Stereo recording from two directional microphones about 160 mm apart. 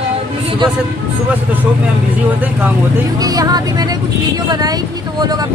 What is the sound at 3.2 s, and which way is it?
Speech, 25° right (ahead or behind).